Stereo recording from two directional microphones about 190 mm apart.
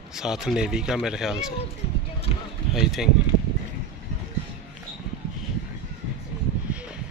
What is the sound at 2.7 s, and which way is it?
Speech, centre (ahead or behind).